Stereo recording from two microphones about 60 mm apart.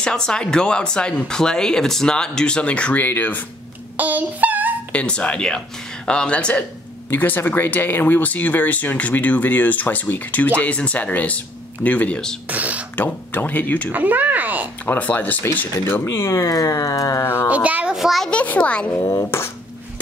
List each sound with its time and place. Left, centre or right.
0.0 s speech: centre
3.0 s speech: left
3.9 s child singing: right
4.9 s speech: centre
7.1 s speech: left
12.4 s speech: right
12.9 s speech: left
13.9 s speech: right
14.9 s speech: left
16.4 s a sound: left
17.5 s speech: right
17.9 s speech: centre
18.3 s speech: left
19.0 s speech: left